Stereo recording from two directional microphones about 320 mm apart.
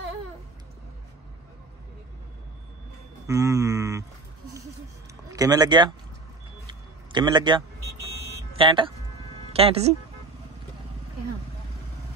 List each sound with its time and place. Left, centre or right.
3.3 s a sound: centre
5.3 s speech: centre
6.7 s vehicle: centre
8.5 s speech: centre